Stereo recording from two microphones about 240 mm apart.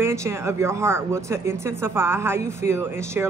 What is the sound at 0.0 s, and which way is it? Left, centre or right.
Speech, centre.